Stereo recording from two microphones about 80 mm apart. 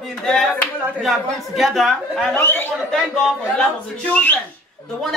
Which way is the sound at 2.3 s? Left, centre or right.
Left.